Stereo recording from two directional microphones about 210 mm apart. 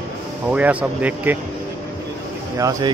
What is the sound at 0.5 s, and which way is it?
Speech, 5° right (ahead or behind).